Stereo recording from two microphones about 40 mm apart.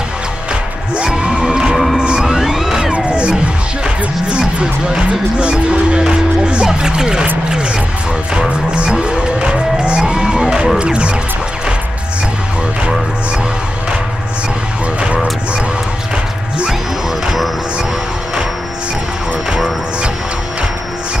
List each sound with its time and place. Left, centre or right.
0.9 s music: right
2.2 s music: centre
3.1 s music: right
8.4 s music: right